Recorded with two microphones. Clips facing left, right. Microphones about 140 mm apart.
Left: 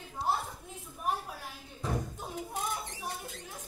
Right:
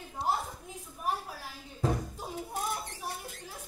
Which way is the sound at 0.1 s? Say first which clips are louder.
Right 1 dB; 10° right (ahead or behind).